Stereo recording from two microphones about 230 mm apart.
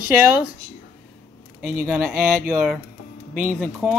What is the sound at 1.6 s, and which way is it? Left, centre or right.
Speech, centre.